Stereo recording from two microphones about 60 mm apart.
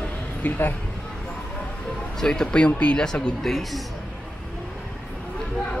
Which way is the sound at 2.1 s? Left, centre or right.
Centre.